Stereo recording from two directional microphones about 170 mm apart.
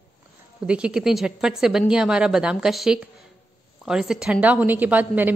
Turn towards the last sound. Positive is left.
turn(degrees=-10)  # may be behind; listen again after turning